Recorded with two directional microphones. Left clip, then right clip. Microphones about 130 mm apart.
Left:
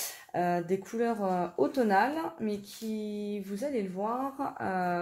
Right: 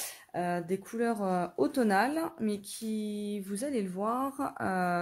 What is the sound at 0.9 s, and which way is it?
Speech, 45° right (ahead or behind).